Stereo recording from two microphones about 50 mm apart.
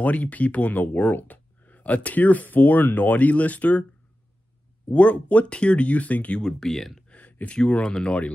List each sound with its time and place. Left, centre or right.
0.0 s speech: left
4.8 s speech: left
6.4 s speech: centre
7.1 s a sound: left
7.5 s speech: centre